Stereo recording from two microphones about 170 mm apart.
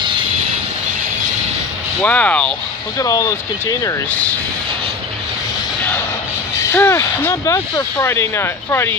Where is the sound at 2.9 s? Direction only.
20° left (ahead or behind).